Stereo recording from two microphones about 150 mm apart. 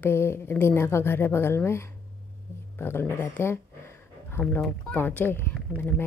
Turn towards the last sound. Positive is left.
turn(degrees=15)  # may be behind; listen again after turning